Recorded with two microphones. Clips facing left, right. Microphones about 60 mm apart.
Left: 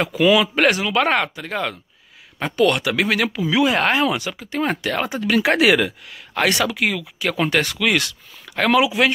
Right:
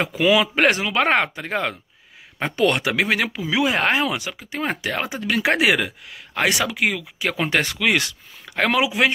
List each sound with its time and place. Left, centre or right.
0.0 s speech: centre
3.0 s speech: centre